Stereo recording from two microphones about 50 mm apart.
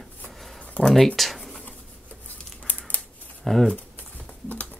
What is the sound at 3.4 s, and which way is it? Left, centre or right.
Speech, centre.